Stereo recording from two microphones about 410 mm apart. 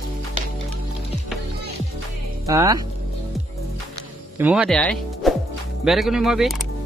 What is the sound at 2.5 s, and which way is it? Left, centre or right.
Speech, centre.